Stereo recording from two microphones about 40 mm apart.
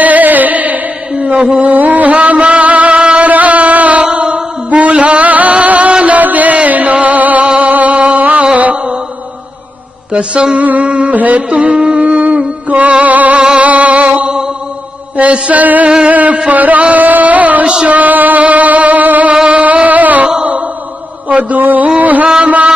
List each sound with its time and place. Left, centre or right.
0.0 s carnatic music: right
1.1 s a sound: right
1.7 s music: right
7.4 s music: right
10.1 s mantra: right
10.6 s music: right
11.4 s music: right
15.5 s music: right
19.3 s mantra: right
19.6 s music: right
21.3 s music: right